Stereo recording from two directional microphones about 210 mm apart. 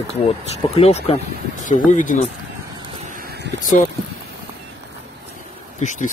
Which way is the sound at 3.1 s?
45° right (ahead or behind).